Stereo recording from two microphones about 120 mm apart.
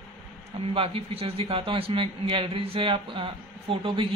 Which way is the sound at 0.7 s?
55° right (ahead or behind).